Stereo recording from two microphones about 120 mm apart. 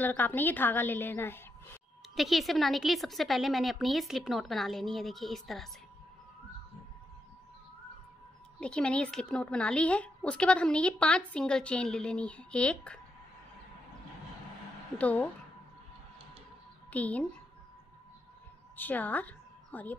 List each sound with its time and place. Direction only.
0.0 s a woman's voice: 15° left (ahead or behind)
2.1 s a woman's voice: centre (ahead or behind)
8.5 s a woman's voice: 10° left (ahead or behind)
15.0 s a woman's voice: 10° left (ahead or behind)
16.9 s a woman's voice: 10° left (ahead or behind)
18.8 s a woman's voice: 15° left (ahead or behind)